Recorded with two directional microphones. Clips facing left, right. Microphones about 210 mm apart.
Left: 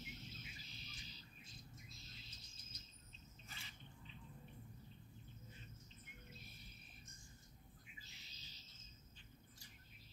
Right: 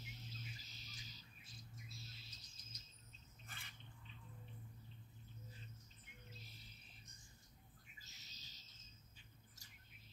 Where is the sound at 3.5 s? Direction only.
55° right (ahead or behind).